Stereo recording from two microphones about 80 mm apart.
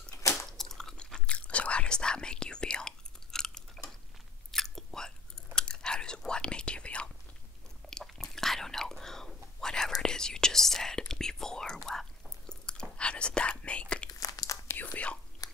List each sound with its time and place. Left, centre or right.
0.2 s chewing: left
0.5 s chewing: centre
7.9 s whispering: centre
14.2 s biting: left
15.4 s a sound: left